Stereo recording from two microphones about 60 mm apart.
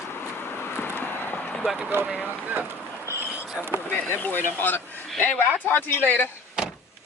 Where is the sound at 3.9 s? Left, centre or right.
Left.